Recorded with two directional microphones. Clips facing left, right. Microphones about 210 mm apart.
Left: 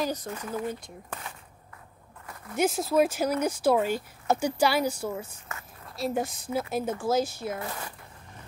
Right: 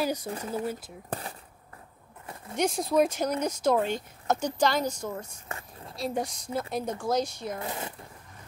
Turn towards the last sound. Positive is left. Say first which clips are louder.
# right 1 dB
turn(degrees=-20)  # may be behind; listen again after turning